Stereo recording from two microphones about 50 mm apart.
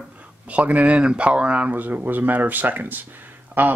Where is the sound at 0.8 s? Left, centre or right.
Centre.